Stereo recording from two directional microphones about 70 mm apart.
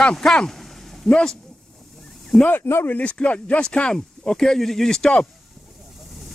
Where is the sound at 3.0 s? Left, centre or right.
Centre.